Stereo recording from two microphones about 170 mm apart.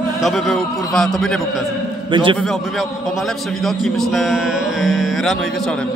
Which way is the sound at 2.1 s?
30° right (ahead or behind).